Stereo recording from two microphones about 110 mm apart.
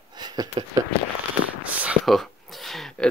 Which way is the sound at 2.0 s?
Centre (ahead or behind).